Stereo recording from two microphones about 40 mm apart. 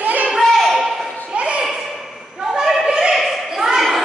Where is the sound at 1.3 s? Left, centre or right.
Right.